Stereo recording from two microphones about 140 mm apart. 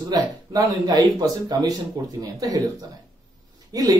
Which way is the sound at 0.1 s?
25° right (ahead or behind).